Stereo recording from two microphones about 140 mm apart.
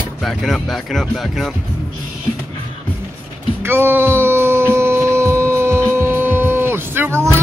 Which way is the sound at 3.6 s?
15° right (ahead or behind).